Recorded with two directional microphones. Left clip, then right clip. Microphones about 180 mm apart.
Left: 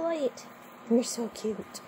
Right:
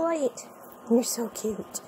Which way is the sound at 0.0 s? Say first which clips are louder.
Right 3 dB; 15° right (ahead or behind).